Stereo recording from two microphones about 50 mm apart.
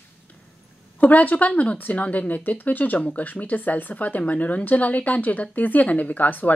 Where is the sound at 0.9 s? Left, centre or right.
Left.